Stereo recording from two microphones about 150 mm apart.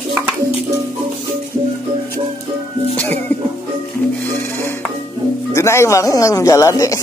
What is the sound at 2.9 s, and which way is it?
Music, 10° left (ahead or behind).